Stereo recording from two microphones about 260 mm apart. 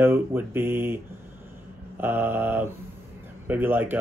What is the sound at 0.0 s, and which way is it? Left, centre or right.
Speech, centre.